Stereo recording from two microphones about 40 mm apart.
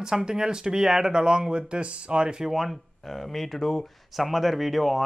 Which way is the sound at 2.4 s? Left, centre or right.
Centre.